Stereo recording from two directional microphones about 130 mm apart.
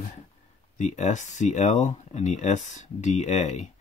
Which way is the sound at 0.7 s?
65° left (ahead or behind).